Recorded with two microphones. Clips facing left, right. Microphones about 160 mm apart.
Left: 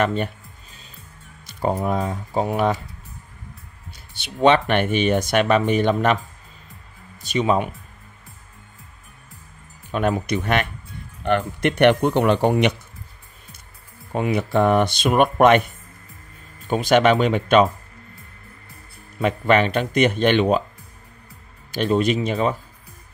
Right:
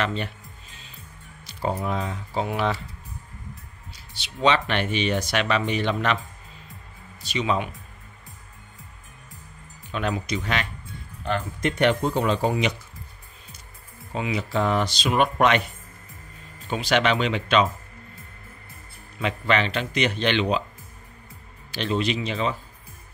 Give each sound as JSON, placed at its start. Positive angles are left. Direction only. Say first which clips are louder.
{"t": 0.0, "sound": "music", "louder": "left 6 dB", "side_deg": 50}
{"t": 1.4, "sound": "speech", "louder": "left 5 dB", "side_deg": 50}
{"t": 3.9, "sound": "speech", "louder": "left 5 dB", "side_deg": 55}
{"t": 7.2, "sound": "speech", "louder": "left 5 dB", "side_deg": 50}
{"t": 9.8, "sound": "speech", "louder": "left 6 dB", "side_deg": 50}
{"t": 11.2, "sound": "speech", "louder": "left 6 dB", "side_deg": 65}
{"t": 14.1, "sound": "speech", "louder": "left 6 dB", "side_deg": 55}
{"t": 19.1, "sound": "speech", "louder": "left 6 dB", "side_deg": 50}
{"t": 21.7, "sound": "speech", "louder": "left 6 dB", "side_deg": 50}